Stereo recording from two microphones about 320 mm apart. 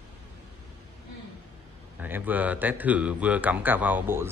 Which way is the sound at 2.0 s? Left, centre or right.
Centre.